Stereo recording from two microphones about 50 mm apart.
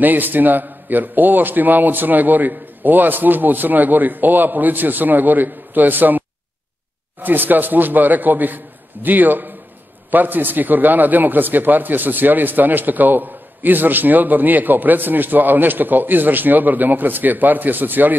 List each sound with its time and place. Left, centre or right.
0.0 s a man's voice: right